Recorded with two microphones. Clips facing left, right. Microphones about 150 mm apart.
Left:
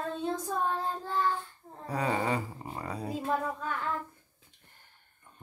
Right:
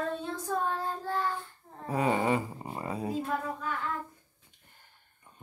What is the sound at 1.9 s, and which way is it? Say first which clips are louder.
Speech: right 3 dB; 20° right (ahead or behind).